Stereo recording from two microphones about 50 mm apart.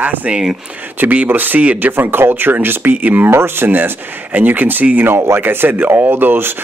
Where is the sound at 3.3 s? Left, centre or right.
Right.